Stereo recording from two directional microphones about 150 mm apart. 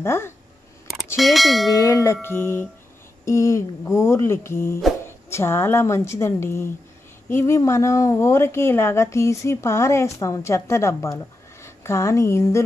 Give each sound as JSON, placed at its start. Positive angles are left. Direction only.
{"t": 0.0, "sound": "a woman's voice", "side_deg": 15}
{"t": 1.1, "sound": "speech", "side_deg": 0}
{"t": 1.8, "sound": "a woman's voice", "side_deg": 20}